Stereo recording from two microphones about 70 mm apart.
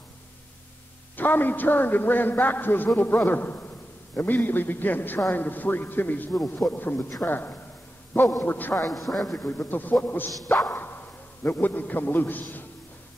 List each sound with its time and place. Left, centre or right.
1.1 s a man's voice: left
8.9 s a man's voice: centre
9.4 s a man's voice: left
10.7 s whip: left
11.4 s a man's voice: left